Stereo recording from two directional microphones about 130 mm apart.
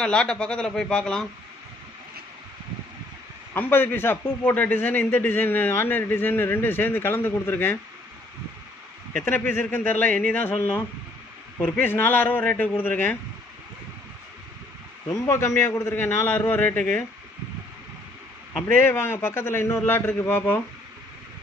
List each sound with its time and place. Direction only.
0.0 s a man's voice: 5° left (ahead or behind)
3.5 s a man's voice: 15° left (ahead or behind)
9.2 s a man's voice: 15° left (ahead or behind)
15.0 s a man's voice: 20° left (ahead or behind)
18.7 s a man's voice: 20° left (ahead or behind)